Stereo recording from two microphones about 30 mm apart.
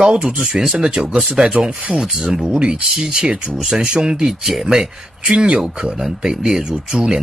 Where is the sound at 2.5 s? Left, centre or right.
Right.